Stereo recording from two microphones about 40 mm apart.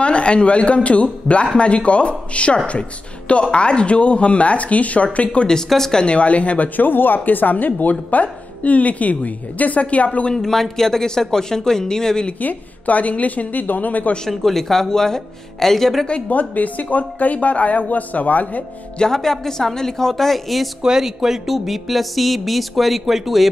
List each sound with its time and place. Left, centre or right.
0.0 s a woman's voice: left
5.7 s speech: centre
5.9 s a woman's voice: left
6.8 s a woman's voice: left
10.3 s speech: centre
12.4 s a woman's voice: left
14.3 s speech: centre
16.3 s a woman's voice: left
18.9 s speech: centre
20.8 s speech: centre